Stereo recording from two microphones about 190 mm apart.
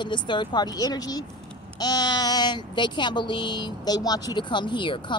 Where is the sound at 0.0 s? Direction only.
25° left (ahead or behind).